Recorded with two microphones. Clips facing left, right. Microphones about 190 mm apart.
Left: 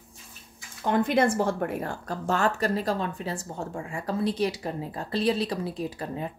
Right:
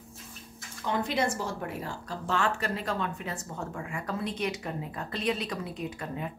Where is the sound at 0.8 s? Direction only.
55° left (ahead or behind).